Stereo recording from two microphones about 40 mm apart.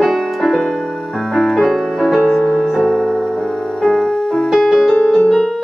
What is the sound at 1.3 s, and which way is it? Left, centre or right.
Music, centre.